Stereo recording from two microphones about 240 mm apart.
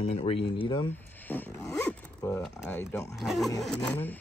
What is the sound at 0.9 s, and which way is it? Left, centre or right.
Zipper, centre.